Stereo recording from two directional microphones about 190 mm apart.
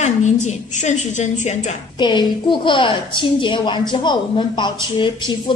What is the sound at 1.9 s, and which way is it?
A woman's voice, 20° left (ahead or behind).